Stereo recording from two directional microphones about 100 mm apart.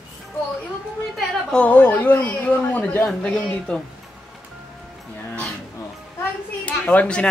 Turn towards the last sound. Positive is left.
turn(degrees=10)  # may be behind; listen again after turning